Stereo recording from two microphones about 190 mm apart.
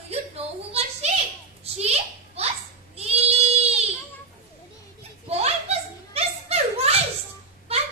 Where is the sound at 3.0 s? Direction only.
35° right (ahead or behind).